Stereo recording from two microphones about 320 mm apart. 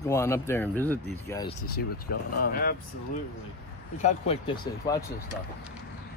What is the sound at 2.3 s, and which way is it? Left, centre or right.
Speech, left.